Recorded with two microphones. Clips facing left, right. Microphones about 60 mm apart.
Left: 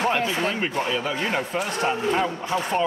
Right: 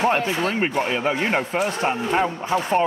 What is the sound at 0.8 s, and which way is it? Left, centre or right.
Speech, right.